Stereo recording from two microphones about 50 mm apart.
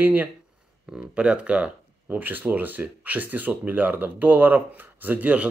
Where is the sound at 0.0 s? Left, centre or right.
Right.